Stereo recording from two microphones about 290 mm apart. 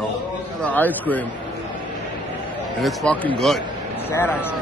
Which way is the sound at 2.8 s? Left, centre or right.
Centre.